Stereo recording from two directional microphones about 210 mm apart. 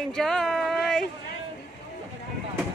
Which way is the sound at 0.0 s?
Centre (ahead or behind).